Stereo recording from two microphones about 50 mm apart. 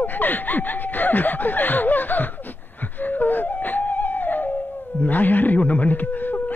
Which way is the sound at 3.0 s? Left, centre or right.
Left.